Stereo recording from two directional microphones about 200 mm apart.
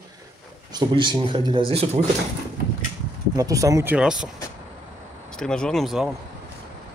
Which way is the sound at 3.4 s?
15° right (ahead or behind).